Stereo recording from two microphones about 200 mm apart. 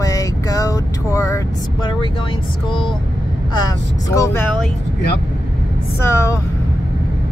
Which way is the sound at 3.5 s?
20° left (ahead or behind).